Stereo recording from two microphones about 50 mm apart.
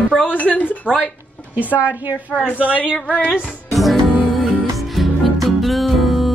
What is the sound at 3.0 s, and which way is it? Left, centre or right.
Music, centre.